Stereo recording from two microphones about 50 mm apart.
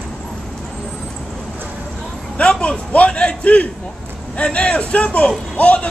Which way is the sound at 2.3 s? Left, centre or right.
Centre.